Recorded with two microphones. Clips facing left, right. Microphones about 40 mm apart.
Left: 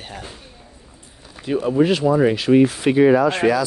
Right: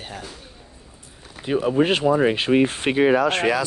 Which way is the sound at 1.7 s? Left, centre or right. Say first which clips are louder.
Left 3 dB; right.